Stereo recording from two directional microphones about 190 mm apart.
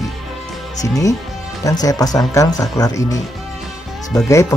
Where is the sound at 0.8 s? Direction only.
15° left (ahead or behind).